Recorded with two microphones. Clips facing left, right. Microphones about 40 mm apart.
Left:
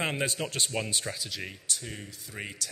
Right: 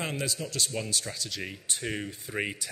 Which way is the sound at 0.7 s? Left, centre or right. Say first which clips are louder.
Left 1 dB; left.